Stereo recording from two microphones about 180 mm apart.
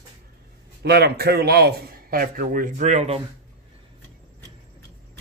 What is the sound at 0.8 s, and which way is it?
A man's voice, 60° right (ahead or behind).